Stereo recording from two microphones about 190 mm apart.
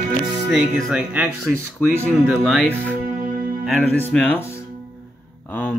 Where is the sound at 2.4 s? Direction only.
5° left (ahead or behind).